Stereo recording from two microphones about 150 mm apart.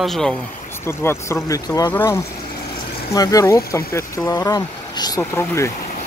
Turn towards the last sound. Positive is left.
turn(degrees=20)  # may be behind; listen again after turning